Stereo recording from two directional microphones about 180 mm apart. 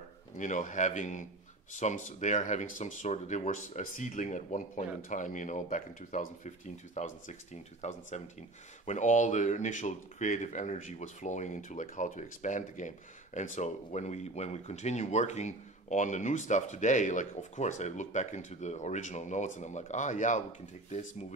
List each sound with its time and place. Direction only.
0.4 s speech: 45° left (ahead or behind)